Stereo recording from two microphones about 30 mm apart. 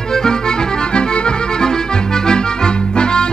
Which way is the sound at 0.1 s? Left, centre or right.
Left.